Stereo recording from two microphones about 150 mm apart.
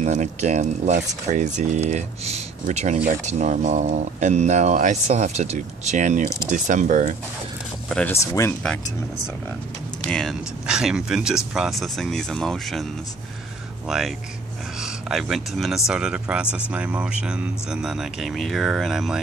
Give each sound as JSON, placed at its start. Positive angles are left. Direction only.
{"t": 0.0, "sound": "speech", "side_deg": -50}
{"t": 7.9, "sound": "speech", "side_deg": 10}
{"t": 8.2, "sound": "speech", "side_deg": 20}
{"t": 10.0, "sound": "speech", "side_deg": 5}
{"t": 13.8, "sound": "speech", "side_deg": -5}